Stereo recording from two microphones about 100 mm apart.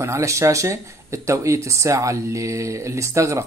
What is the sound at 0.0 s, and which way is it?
Speech, 30° right (ahead or behind).